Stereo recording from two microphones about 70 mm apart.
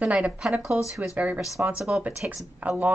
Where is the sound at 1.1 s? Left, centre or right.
Right.